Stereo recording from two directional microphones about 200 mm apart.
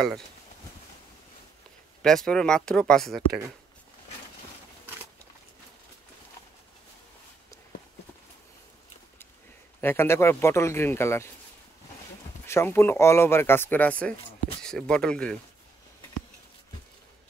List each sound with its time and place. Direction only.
2.0 s speech: 5° left (ahead or behind)
9.8 s speech: 10° left (ahead or behind)
12.4 s speech: 10° left (ahead or behind)